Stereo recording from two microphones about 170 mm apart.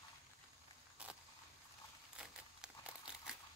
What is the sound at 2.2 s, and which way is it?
Crumpling, 5° right (ahead or behind).